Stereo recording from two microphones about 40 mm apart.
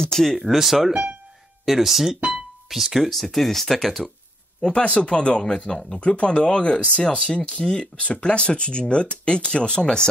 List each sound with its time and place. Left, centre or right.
0.0 s speech: centre
0.4 s speech: centre
4.6 s speech: left